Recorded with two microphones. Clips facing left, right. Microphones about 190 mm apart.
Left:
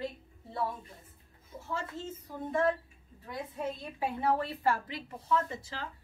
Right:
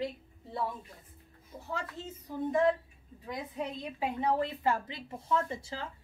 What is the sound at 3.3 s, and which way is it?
A woman's voice, 15° right (ahead or behind).